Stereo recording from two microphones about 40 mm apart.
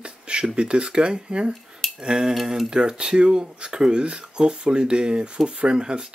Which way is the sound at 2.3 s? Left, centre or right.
Centre.